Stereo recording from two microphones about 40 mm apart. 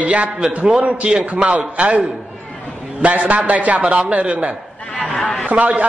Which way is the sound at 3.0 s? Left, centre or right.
Right.